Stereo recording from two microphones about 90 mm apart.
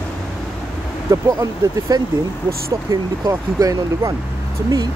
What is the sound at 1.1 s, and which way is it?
Speech, 40° right (ahead or behind).